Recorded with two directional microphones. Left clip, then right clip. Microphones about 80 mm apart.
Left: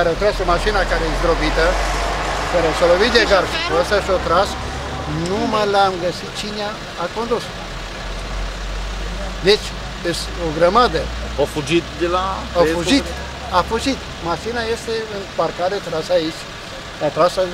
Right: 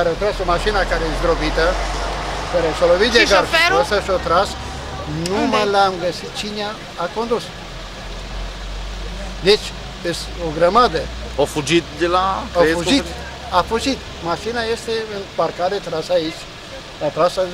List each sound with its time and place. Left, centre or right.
0.0 s speech: centre
1.7 s vehicle: left
3.0 s speech: centre
5.5 s speech: centre
9.5 s speech: centre
11.3 s speech: centre